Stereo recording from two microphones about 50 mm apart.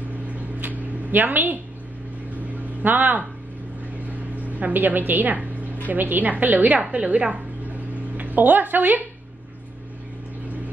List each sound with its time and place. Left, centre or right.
0.3 s a sound: right
2.8 s a woman's voice: right
4.4 s a woman's voice: right